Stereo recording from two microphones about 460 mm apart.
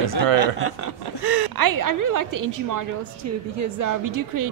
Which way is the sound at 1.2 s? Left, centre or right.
Right.